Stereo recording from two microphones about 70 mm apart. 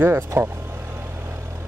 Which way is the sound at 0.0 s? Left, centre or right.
Right.